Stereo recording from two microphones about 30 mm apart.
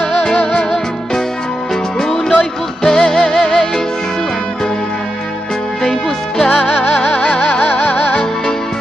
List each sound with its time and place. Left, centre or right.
0.2 s music: left
2.0 s music: centre
5.9 s music: centre
7.1 s music: left